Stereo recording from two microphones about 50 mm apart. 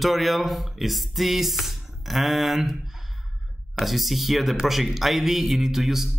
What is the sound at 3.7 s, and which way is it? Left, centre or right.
Speech, centre.